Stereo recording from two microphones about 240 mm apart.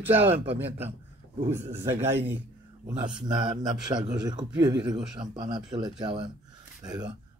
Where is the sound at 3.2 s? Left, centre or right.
Centre.